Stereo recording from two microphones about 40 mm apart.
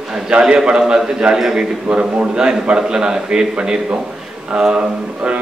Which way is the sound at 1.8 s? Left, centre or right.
Right.